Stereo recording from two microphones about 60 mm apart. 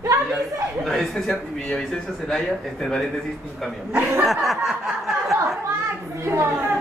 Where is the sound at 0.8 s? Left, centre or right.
Centre.